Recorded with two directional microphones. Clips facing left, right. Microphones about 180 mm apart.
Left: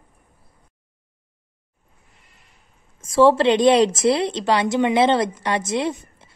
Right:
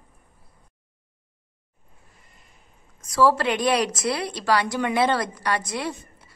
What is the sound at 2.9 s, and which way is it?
A woman's voice, 25° left (ahead or behind).